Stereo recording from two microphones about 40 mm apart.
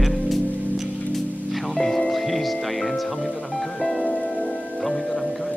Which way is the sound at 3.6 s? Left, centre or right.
Left.